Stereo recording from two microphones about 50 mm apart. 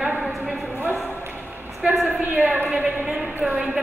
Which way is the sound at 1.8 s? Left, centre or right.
Centre.